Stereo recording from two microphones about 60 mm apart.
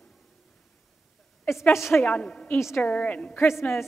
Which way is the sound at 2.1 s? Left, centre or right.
Centre.